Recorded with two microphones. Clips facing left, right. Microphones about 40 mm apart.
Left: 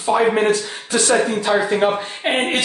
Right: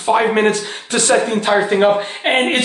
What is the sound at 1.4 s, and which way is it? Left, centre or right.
Speech, right.